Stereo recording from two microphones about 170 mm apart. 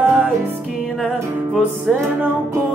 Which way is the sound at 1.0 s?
Centre (ahead or behind).